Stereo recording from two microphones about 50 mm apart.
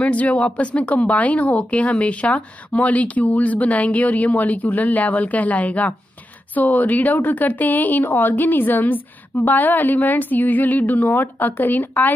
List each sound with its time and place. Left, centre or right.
0.0 s a woman's voice: left